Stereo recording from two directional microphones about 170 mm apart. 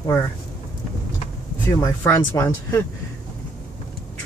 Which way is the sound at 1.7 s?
15° left (ahead or behind).